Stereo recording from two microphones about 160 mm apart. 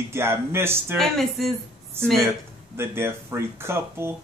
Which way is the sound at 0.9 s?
Centre (ahead or behind).